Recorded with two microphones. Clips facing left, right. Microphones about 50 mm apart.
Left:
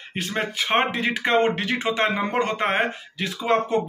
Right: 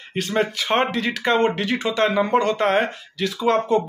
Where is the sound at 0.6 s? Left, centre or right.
Centre.